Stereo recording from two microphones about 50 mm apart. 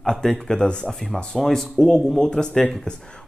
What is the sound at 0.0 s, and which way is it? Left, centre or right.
Speech, centre.